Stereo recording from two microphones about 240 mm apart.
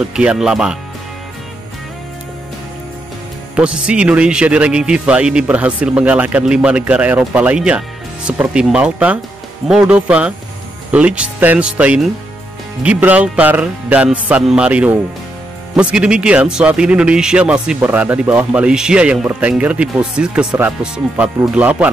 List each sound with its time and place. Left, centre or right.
0.1 s a man's voice: centre
3.5 s a man's voice: centre